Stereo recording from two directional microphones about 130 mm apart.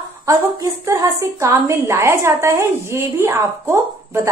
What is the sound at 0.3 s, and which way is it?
A woman's voice, 25° right (ahead or behind).